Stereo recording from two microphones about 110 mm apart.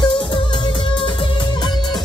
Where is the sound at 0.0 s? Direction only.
45° left (ahead or behind).